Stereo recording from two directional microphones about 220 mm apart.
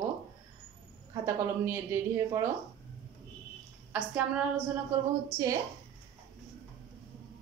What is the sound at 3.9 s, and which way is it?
Speech, 5° right (ahead or behind).